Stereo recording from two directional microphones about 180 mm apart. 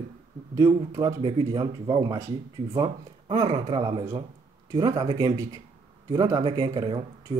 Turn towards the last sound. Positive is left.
turn(degrees=-25)  # may be behind; listen again after turning